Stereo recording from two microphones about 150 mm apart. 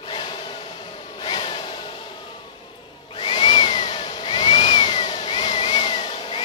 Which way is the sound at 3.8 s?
35° left (ahead or behind).